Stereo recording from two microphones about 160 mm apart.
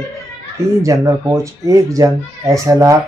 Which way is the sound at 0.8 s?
20° right (ahead or behind).